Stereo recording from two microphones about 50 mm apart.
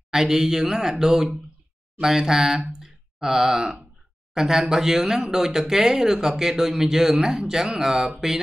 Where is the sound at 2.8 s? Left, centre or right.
Centre.